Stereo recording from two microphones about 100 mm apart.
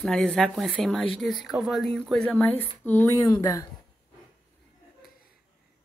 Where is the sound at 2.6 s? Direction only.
20° left (ahead or behind).